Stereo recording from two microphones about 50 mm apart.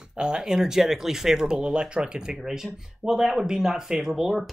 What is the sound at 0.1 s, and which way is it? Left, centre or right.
Speech, centre.